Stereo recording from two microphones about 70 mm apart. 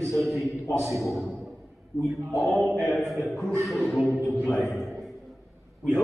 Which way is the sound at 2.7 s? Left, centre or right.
Centre.